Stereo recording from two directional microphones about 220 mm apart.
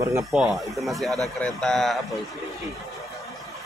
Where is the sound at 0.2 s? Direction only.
5° right (ahead or behind).